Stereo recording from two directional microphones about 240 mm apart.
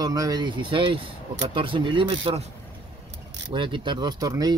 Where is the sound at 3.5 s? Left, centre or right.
Centre.